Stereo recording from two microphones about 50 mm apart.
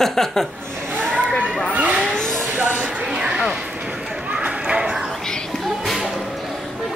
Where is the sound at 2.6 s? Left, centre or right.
Right.